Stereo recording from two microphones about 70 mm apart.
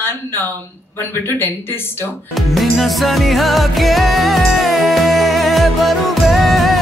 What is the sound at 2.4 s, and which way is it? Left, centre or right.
Music, centre.